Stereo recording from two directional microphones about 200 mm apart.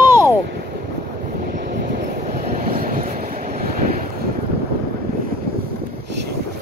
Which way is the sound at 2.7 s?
45° right (ahead or behind).